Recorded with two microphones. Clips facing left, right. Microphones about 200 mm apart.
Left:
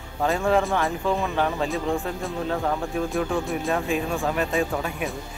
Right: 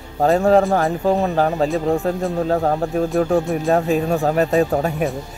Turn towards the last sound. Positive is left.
turn(degrees=-40)  # may be behind; listen again after turning